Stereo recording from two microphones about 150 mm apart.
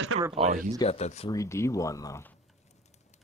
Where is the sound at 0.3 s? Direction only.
45° right (ahead or behind).